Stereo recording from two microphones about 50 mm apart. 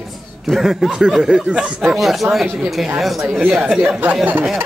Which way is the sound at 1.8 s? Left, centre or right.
Centre.